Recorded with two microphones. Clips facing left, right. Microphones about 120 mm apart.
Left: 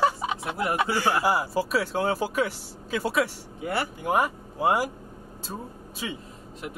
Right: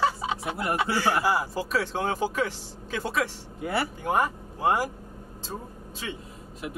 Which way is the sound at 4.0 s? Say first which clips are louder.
Left 3 dB; 10° left (ahead or behind).